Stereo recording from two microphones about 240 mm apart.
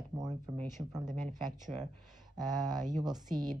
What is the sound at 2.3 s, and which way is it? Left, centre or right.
Speech, centre.